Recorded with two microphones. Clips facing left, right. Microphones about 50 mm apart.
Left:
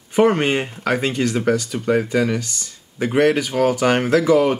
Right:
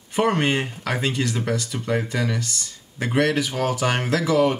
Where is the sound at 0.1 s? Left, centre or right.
Left.